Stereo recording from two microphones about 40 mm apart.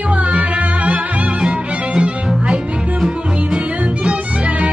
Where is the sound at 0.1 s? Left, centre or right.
Right.